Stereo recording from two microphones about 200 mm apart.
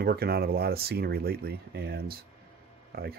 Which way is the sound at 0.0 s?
50° right (ahead or behind).